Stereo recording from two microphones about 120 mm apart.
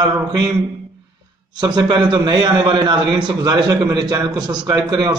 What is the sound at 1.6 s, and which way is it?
A man's voice, 35° right (ahead or behind).